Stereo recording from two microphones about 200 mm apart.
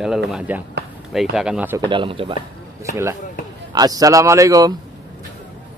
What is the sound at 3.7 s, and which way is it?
Speech, 20° right (ahead or behind).